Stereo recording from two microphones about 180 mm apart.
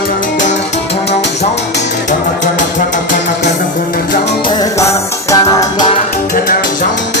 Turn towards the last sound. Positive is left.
turn(degrees=20)  # may be behind; listen again after turning